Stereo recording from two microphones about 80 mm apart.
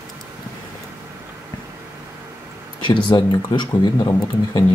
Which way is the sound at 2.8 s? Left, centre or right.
Left.